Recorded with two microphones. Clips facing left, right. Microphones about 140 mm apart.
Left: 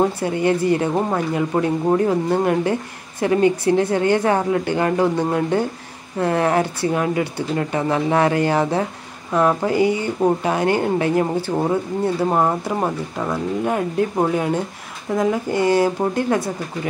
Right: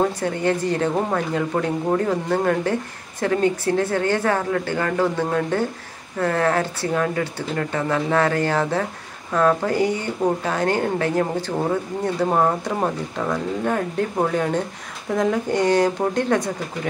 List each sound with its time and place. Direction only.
0.2 s speech: 10° left (ahead or behind)